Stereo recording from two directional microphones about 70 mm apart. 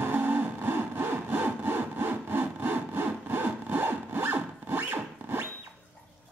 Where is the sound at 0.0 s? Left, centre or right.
Right.